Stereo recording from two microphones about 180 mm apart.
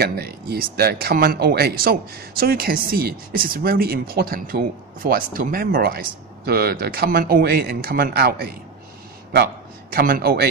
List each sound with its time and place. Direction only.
0.0 s a man's voice: 60° right (ahead or behind)